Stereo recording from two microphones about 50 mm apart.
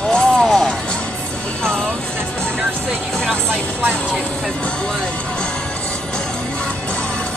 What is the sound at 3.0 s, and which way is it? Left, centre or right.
Speech, centre.